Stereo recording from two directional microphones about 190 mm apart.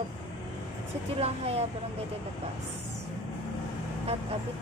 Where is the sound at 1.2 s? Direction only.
30° right (ahead or behind).